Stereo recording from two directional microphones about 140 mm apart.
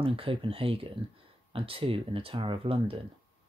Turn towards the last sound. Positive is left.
turn(degrees=-40)  # may be behind; listen again after turning